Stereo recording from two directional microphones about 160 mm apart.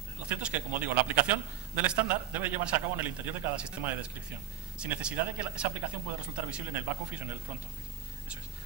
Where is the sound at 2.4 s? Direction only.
10° right (ahead or behind).